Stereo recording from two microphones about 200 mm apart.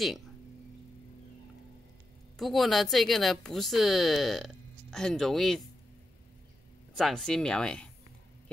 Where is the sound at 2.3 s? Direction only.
Centre (ahead or behind).